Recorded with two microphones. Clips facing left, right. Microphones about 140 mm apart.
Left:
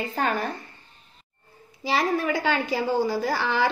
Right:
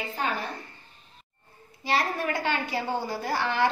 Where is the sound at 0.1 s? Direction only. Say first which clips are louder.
Left 4 dB; 45° left (ahead or behind).